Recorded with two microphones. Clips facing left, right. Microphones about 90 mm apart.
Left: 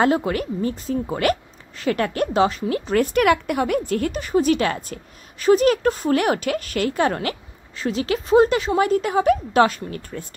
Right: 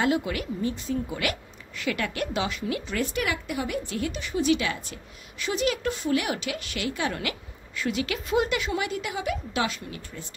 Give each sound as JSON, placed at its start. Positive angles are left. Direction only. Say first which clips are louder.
{"t": 0.0, "sound": "a woman's voice", "louder": "left 6 dB", "side_deg": 40}
{"t": 3.2, "sound": "a woman's voice", "louder": "left 11 dB", "side_deg": 60}